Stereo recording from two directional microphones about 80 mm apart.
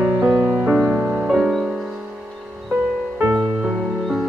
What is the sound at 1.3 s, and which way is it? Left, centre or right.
Music, centre.